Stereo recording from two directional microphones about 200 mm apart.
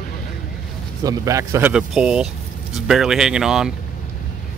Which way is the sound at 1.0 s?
15° right (ahead or behind).